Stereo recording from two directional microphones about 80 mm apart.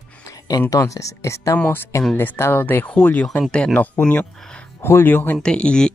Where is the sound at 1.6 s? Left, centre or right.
Left.